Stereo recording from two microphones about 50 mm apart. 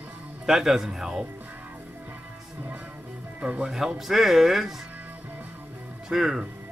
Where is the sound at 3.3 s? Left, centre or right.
Right.